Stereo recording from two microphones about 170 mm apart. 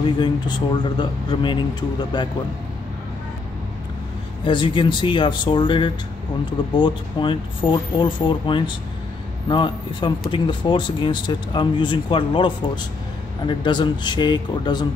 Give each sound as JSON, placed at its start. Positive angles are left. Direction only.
{"t": 0.2, "sound": "speech", "side_deg": 25}
{"t": 4.5, "sound": "speech", "side_deg": 30}